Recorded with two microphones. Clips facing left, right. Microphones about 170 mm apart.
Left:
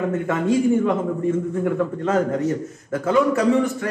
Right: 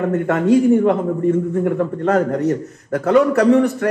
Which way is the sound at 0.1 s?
65° right (ahead or behind).